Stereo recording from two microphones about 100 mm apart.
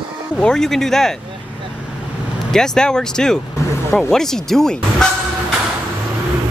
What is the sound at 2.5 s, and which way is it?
Speech, 5° left (ahead or behind).